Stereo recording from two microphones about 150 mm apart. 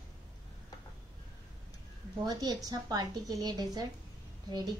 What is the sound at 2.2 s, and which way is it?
A woman's voice, 25° right (ahead or behind).